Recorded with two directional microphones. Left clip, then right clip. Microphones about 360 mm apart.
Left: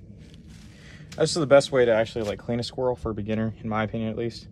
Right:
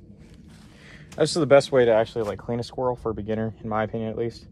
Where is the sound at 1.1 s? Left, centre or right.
Centre.